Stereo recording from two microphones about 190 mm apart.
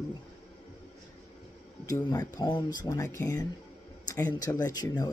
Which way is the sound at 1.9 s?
20° left (ahead or behind).